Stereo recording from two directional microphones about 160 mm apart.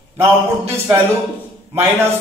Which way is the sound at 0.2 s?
15° right (ahead or behind).